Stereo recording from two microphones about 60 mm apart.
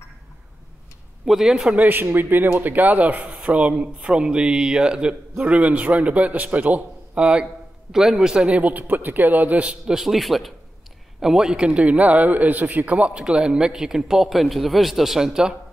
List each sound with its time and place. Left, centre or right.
1.2 s a man's voice: centre
1.8 s a man's voice: right; by 7.4 s centre
7.9 s a man's voice: centre
9.9 s a man's voice: centre